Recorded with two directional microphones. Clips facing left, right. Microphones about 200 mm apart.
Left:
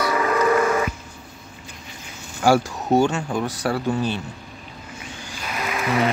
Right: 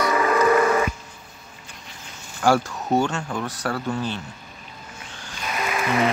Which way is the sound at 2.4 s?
10° left (ahead or behind).